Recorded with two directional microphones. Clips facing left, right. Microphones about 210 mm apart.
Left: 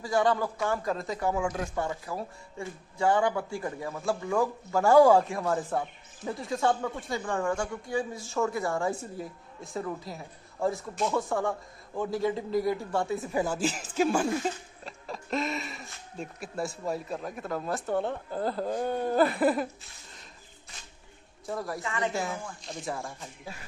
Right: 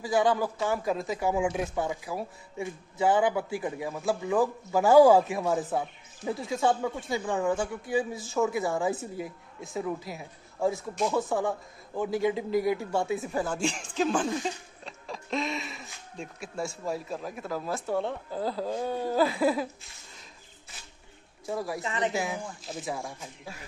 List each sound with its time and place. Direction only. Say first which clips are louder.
0.0 s speech: right 1 dB; centre (ahead or behind)
1.4 s speech: right 3 dB; 20° right (ahead or behind)
1.8 s speech: right 1 dB; 5° right (ahead or behind)
21.5 s speech: right 2 dB; 5° right (ahead or behind)
21.8 s speech: right 1 dB; 20° right (ahead or behind)
22.6 s speech: right 1 dB; 5° right (ahead or behind)